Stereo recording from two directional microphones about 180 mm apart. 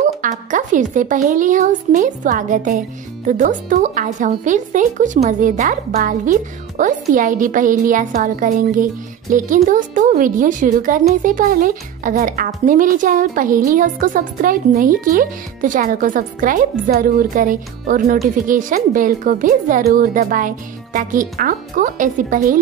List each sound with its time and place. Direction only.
0.0 s speech: 45° right (ahead or behind)